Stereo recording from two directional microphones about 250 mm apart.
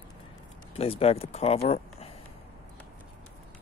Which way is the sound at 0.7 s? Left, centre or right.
Left.